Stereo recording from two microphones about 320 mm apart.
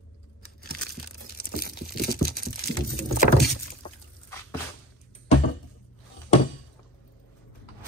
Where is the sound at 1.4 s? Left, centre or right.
Left.